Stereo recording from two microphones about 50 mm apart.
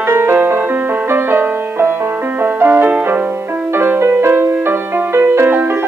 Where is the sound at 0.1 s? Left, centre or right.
Right.